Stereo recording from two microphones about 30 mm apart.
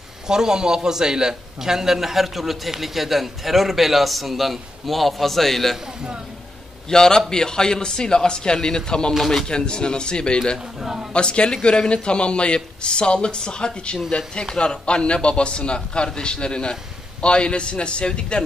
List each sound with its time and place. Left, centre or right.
0.3 s a man's voice: right; by 5.8 s centre
6.9 s a man's voice: left
9.2 s a man's voice: centre
9.5 s a man's voice: left
10.8 s a man's voice: centre
11.1 s a man's voice: left